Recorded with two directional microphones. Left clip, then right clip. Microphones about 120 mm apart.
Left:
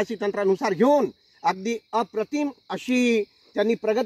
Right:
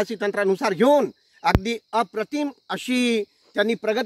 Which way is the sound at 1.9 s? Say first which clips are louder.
Right 2 dB; 5° left (ahead or behind).